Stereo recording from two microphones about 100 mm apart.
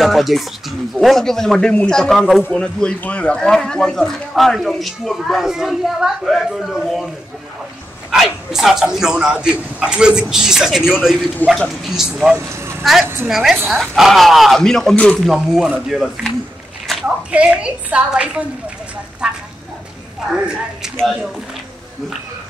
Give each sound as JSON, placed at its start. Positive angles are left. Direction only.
{"t": 0.0, "sound": "speech", "side_deg": 0}
{"t": 8.1, "sound": "speech", "side_deg": -5}
{"t": 13.0, "sound": "a woman's voice", "side_deg": -25}
{"t": 13.3, "sound": "speech", "side_deg": 0}
{"t": 20.9, "sound": "speech", "side_deg": 0}